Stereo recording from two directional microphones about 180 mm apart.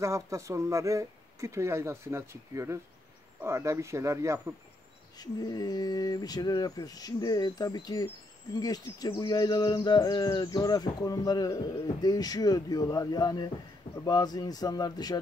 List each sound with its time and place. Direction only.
0.0 s speech: 15° right (ahead or behind)
5.1 s speech: 20° left (ahead or behind)